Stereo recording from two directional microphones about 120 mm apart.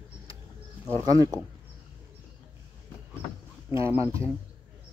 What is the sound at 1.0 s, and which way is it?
Speech, 30° right (ahead or behind).